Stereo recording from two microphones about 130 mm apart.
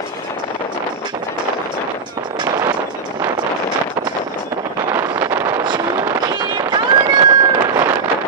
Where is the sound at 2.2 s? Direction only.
35° right (ahead or behind).